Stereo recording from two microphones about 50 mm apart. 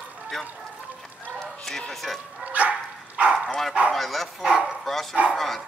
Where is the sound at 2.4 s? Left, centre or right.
Right.